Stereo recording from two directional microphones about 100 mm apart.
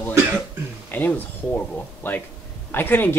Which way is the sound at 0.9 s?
20° left (ahead or behind).